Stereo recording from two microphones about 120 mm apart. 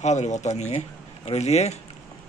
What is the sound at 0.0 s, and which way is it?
Speech, 75° left (ahead or behind).